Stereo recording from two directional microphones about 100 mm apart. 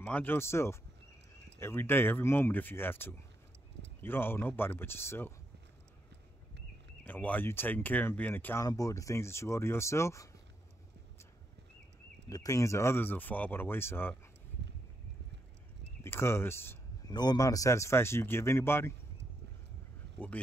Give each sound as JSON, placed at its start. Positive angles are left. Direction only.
{"t": 0.0, "sound": "speech", "side_deg": 15}
{"t": 7.1, "sound": "speech", "side_deg": 15}
{"t": 8.5, "sound": "speech", "side_deg": 35}
{"t": 12.3, "sound": "speech", "side_deg": 35}
{"t": 16.0, "sound": "speech", "side_deg": 25}
{"t": 17.0, "sound": "speech", "side_deg": 45}